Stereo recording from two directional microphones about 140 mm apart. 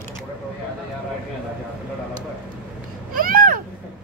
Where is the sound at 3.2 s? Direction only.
90° right.